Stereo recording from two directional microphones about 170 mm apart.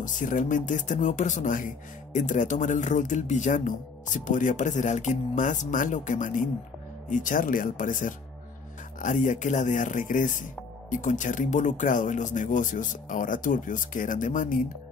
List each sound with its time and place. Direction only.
0.0 s speech: 50° left (ahead or behind)